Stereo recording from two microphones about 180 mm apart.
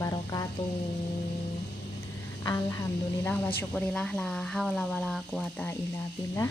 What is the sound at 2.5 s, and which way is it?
Speech, 15° left (ahead or behind).